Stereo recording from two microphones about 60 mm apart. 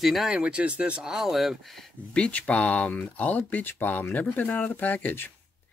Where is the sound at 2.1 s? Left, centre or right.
Centre.